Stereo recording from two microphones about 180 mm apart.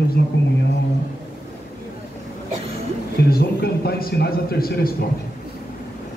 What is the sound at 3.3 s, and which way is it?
A man's voice, 60° left (ahead or behind).